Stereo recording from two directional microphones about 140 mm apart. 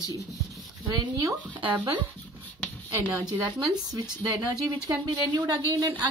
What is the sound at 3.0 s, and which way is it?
Speech, 30° right (ahead or behind).